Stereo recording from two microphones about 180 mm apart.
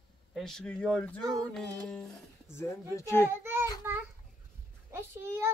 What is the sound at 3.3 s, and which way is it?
Child singing, 15° right (ahead or behind).